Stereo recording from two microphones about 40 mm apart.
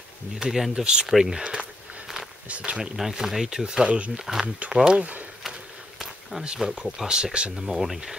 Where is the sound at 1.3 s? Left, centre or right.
Right.